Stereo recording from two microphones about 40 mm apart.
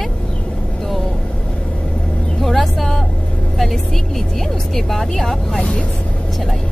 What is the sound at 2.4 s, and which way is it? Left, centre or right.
Speech, centre.